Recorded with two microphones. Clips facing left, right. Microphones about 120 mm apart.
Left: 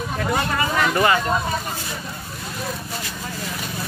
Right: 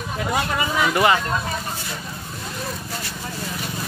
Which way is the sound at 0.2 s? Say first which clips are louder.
Even; 10° right (ahead or behind).